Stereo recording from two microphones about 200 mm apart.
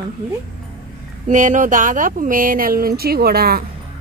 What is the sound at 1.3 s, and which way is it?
Speech, 40° right (ahead or behind).